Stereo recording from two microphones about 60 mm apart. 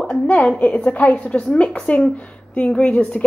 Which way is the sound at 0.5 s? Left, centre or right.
Left.